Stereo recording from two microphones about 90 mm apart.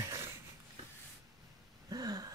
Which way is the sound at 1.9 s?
45° right (ahead or behind).